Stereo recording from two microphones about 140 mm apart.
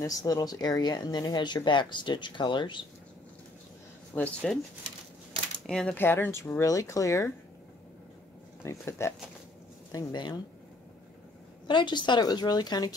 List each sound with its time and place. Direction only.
0.0 s speech: 25° left (ahead or behind)
4.1 s speech: 10° left (ahead or behind)
5.7 s speech: 5° left (ahead or behind)
5.9 s speech: 15° left (ahead or behind)
8.6 s speech: 20° left (ahead or behind)
9.9 s speech: 30° left (ahead or behind)
11.6 s speech: 35° left (ahead or behind)